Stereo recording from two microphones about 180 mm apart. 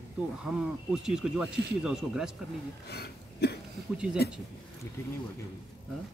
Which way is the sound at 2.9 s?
65° left (ahead or behind).